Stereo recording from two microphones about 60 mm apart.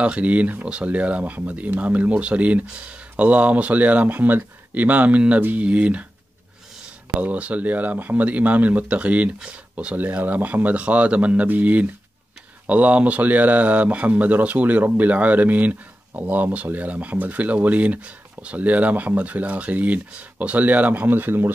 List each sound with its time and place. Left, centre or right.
0.0 s speech: right
7.2 s speech: right